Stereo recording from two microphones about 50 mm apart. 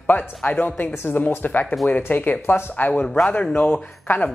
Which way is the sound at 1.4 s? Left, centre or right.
Left.